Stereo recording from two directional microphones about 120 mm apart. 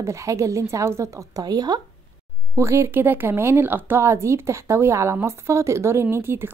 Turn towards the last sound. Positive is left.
turn(degrees=-20)  # may be behind; listen again after turning